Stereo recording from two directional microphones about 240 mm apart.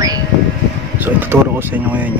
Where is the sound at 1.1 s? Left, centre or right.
Centre.